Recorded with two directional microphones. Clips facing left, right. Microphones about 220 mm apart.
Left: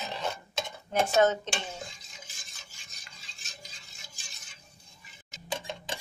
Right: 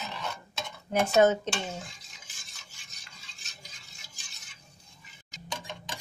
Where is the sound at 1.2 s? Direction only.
15° right (ahead or behind).